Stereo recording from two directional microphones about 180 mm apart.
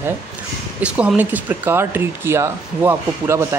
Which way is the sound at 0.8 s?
5° right (ahead or behind).